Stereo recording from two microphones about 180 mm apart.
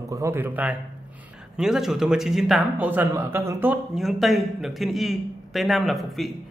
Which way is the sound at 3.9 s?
Centre (ahead or behind).